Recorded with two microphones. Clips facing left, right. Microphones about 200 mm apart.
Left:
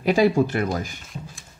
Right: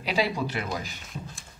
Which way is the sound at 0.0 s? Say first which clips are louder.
Left 9 dB; 50° left (ahead or behind).